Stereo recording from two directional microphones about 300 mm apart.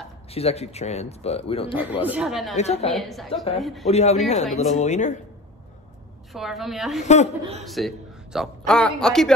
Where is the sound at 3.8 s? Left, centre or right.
Left.